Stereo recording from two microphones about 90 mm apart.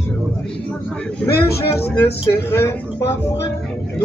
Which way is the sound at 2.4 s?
25° left (ahead or behind).